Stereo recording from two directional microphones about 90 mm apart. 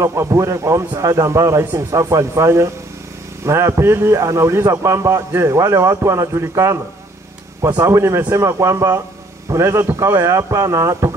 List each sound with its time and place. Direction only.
0.0 s a man's voice: 35° right (ahead or behind)